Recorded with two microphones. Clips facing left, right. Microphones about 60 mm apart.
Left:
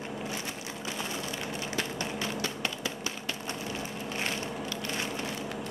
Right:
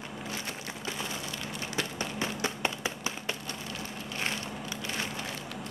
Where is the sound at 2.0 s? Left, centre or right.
Right.